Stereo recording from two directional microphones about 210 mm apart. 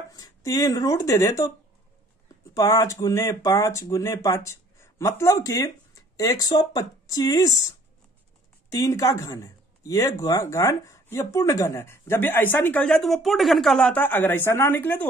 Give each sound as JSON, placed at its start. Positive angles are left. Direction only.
{"t": 0.1, "sound": "speech", "side_deg": 15}
{"t": 2.5, "sound": "speech", "side_deg": 15}
{"t": 8.7, "sound": "speech", "side_deg": 15}